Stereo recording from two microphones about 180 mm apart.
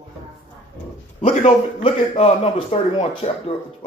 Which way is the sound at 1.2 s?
30° left (ahead or behind).